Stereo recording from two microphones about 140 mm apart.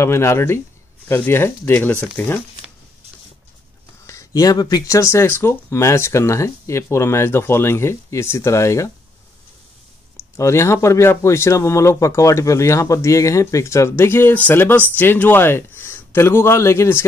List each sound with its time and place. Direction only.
0.0 s speech: 20° left (ahead or behind)
4.0 s speech: 20° left (ahead or behind)
10.3 s speech: 20° left (ahead or behind)